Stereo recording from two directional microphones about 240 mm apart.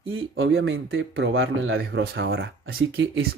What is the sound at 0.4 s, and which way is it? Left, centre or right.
Speech, right.